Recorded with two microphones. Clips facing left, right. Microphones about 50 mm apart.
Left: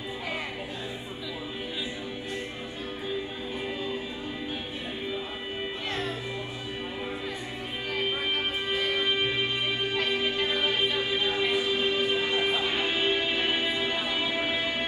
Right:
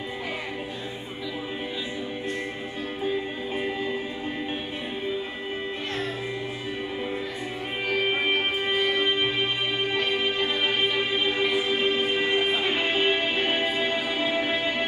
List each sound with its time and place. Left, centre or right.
7.9 s music: right
11.5 s music: right
12.8 s music: right